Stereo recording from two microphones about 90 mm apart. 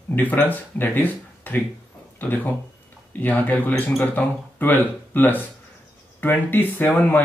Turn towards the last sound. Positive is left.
turn(degrees=20)  # may be behind; listen again after turning